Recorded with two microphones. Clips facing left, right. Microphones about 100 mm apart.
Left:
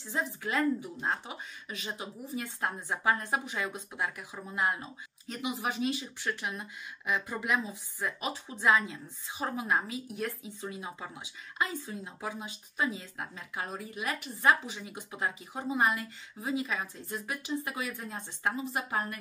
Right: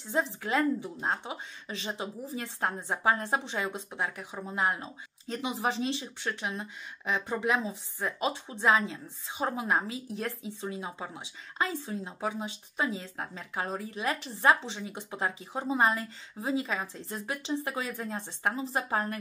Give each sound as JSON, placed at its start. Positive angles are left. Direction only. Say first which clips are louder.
{"t": 0.1, "sound": "a woman's voice", "louder": "right 3 dB", "side_deg": -25}